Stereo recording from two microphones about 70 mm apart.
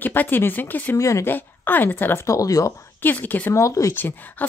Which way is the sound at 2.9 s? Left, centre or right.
Left.